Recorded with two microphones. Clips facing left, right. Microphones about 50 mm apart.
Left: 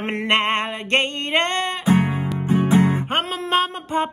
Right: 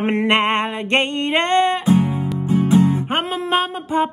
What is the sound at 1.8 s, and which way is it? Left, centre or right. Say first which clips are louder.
Guitar: right 2 dB; left.